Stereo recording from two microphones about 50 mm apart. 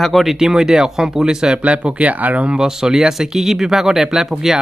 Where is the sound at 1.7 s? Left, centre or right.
Right.